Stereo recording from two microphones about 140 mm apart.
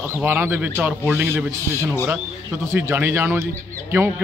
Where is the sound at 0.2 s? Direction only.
15° right (ahead or behind).